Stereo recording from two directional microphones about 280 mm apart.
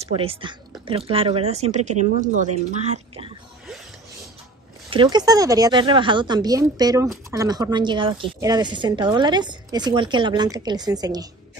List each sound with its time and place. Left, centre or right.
0.0 s speech: centre
4.8 s a woman's voice: centre